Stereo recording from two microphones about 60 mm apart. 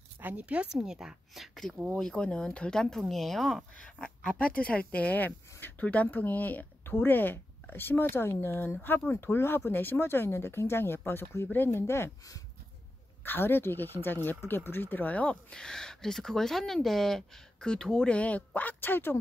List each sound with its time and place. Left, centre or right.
0.2 s a woman's voice: right; by 1.6 s centre
2.0 s speech: centre
3.7 s speech: centre; by 12.1 s left
13.2 s speech: left
15.5 s speech: centre; by 19.1 s left